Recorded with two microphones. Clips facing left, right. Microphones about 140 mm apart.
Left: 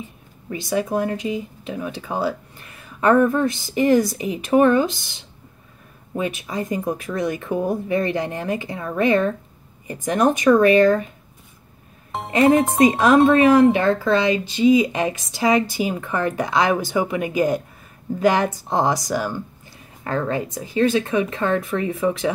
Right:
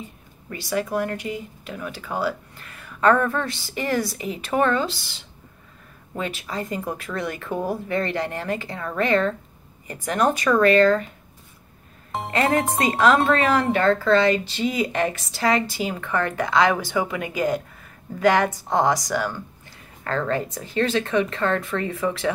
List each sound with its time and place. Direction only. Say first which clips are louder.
0.5 s speech: left 3 dB; 20° left (ahead or behind)
6.1 s speech: left 4 dB; 20° left (ahead or behind)
7.5 s speech: left 3 dB; 5° right (ahead or behind)
7.9 s speech: left 3 dB; 20° left (ahead or behind)
12.3 s speech: left 6 dB; 20° left (ahead or behind)